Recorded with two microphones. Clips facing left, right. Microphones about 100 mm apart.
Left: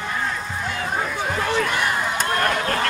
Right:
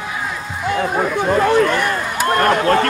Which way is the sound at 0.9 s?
55° right (ahead or behind).